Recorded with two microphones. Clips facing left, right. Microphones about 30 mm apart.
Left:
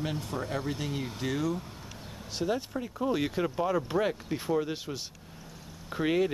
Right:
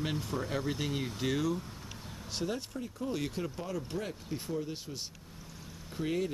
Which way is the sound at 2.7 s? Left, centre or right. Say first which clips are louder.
Left 6 dB; left.